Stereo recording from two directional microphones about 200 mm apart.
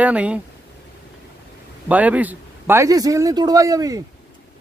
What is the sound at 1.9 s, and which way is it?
A man's voice, 5° right (ahead or behind).